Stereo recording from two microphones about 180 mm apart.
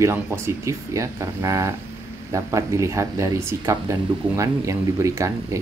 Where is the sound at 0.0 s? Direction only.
15° right (ahead or behind).